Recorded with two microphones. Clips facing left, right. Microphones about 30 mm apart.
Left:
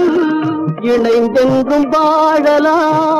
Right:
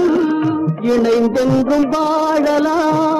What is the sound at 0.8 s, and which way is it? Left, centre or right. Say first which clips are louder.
Music: left 3 dB; centre.